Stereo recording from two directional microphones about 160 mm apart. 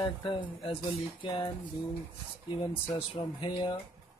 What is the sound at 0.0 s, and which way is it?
Speech, 30° left (ahead or behind).